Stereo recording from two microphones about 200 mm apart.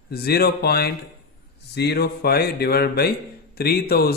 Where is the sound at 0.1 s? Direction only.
50° left (ahead or behind).